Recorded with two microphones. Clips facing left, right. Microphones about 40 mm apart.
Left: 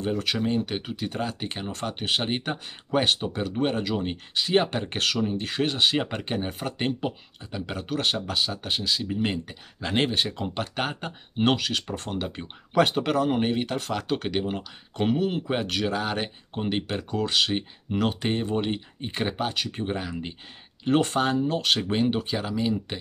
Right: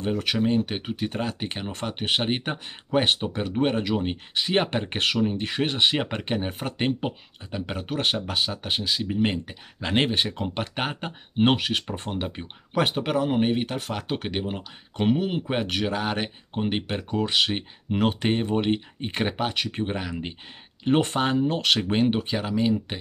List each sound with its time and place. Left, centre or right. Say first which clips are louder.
0.7 s speech: right 1 dB; right
3.9 s speech: right 2 dB; right
4.3 s speech: left 1 dB; right